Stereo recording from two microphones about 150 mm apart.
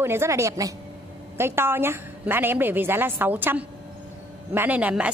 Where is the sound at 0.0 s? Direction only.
15° right (ahead or behind).